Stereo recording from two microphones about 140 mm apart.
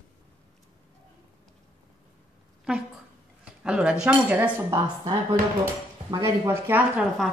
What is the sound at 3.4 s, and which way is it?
Speech, 5° right (ahead or behind).